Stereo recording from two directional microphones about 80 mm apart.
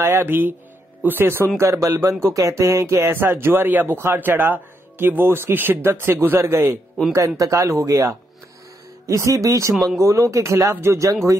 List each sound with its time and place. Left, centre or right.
0.0 s speech: right